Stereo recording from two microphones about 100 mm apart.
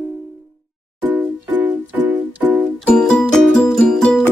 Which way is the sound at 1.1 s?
20° right (ahead or behind).